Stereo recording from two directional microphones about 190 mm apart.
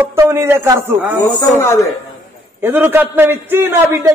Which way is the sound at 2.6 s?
10° right (ahead or behind).